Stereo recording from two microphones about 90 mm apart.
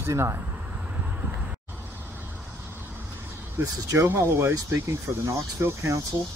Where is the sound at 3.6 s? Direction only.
35° right (ahead or behind).